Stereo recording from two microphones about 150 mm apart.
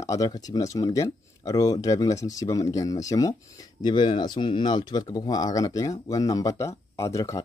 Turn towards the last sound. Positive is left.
turn(degrees=20)  # may be behind; listen again after turning